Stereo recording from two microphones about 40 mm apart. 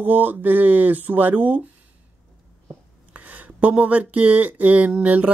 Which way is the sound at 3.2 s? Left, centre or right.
Right.